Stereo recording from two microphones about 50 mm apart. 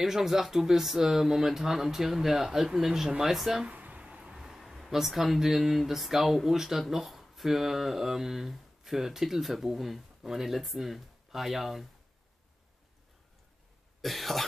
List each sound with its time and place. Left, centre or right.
0.0 s speech: centre
3.7 s a sound: right
4.0 s speech: centre
14.0 s speech: centre